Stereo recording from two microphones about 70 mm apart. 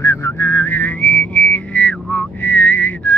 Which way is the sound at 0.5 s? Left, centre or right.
Left.